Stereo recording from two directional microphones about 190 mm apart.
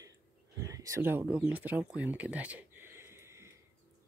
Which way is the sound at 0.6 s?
15° right (ahead or behind).